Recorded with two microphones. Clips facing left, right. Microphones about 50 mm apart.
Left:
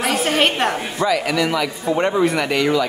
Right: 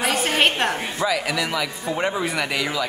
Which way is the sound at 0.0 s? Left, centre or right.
Centre.